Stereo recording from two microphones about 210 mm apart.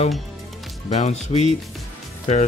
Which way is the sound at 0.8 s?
30° left (ahead or behind).